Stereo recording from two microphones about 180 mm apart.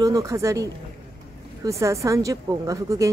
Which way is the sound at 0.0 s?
20° right (ahead or behind).